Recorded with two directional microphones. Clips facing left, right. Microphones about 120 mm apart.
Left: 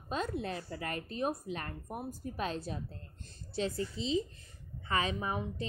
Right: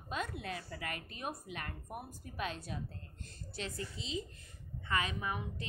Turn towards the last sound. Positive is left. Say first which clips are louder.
# left 4 dB
turn(degrees=30)  # may be behind; listen again after turning